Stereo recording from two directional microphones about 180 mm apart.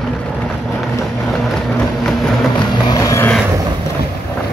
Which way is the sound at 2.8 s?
20° left (ahead or behind).